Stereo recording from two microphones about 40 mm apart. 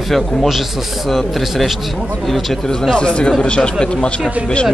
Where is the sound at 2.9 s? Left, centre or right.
Left.